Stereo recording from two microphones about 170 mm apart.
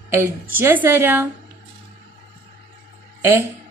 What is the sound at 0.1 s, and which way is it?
A woman's voice, 15° right (ahead or behind).